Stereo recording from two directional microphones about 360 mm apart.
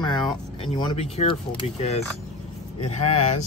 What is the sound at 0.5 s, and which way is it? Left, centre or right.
Speech, centre.